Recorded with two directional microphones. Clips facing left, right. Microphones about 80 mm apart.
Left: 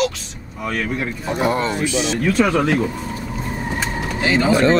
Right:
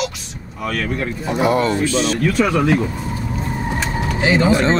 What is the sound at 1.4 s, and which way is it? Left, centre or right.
Speech, left.